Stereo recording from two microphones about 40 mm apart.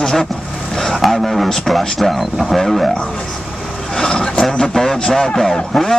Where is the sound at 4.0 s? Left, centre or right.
Centre.